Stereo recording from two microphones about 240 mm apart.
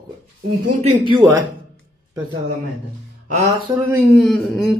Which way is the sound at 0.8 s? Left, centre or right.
Right.